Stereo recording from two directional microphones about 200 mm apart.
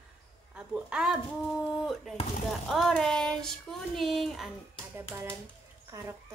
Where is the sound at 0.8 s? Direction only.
5° right (ahead or behind).